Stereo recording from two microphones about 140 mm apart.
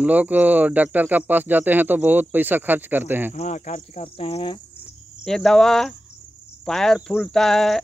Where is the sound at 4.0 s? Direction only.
40° left (ahead or behind).